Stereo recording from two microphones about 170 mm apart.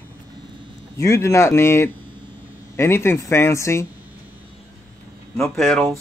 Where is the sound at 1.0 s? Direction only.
15° left (ahead or behind).